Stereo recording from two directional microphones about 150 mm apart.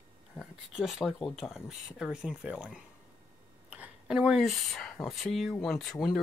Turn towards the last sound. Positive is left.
turn(degrees=0)  # may be behind; listen again after turning